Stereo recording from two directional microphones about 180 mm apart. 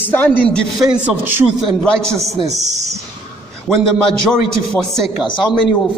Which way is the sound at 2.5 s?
20° right (ahead or behind).